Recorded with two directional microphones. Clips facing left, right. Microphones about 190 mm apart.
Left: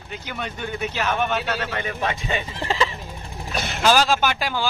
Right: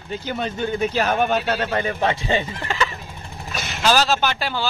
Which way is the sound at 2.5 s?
30° left (ahead or behind).